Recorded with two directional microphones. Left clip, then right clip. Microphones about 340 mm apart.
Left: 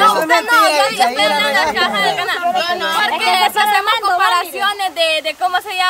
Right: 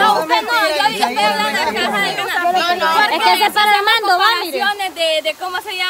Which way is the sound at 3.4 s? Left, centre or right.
Right.